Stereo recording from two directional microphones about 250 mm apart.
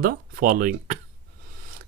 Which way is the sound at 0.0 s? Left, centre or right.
Right.